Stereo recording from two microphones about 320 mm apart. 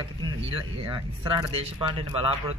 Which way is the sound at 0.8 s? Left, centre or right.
Centre.